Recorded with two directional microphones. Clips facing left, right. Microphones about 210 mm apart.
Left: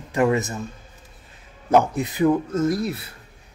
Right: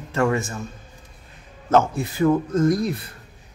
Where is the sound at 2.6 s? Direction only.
5° left (ahead or behind).